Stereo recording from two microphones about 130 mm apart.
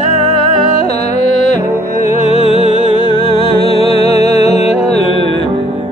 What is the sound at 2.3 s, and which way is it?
Music, 50° left (ahead or behind).